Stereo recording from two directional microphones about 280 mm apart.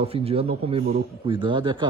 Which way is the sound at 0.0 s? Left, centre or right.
Right.